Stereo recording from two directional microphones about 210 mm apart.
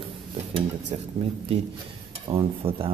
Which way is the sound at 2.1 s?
25° right (ahead or behind).